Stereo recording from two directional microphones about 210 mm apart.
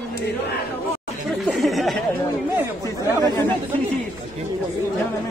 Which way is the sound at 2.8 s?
15° left (ahead or behind).